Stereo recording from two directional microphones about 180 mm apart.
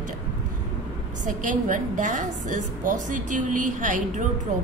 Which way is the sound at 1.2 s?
45° right (ahead or behind).